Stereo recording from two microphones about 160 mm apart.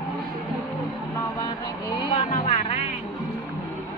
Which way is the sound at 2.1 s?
45° left (ahead or behind).